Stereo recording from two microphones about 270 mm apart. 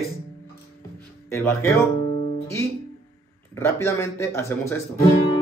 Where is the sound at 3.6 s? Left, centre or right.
Centre.